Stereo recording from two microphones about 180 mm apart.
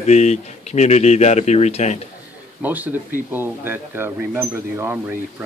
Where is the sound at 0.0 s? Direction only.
40° left (ahead or behind).